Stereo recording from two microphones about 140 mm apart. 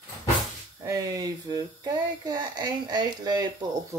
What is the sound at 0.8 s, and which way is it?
Speech, 25° right (ahead or behind).